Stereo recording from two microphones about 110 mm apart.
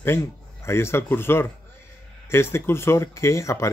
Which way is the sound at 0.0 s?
25° left (ahead or behind).